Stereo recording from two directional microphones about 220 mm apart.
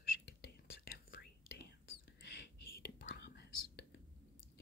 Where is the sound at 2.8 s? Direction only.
50° left (ahead or behind).